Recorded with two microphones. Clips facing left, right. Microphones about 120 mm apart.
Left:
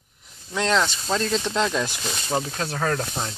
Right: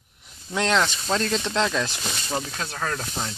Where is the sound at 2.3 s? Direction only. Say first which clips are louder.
Left 4 dB; 35° left (ahead or behind).